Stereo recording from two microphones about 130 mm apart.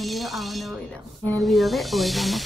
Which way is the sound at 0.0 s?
Centre (ahead or behind).